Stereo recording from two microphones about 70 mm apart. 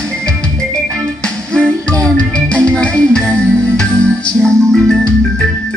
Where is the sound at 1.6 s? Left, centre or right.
Centre.